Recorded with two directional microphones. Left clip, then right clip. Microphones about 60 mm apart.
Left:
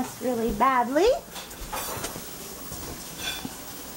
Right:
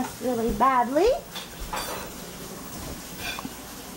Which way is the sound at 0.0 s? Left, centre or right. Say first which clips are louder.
Right 1 dB; centre.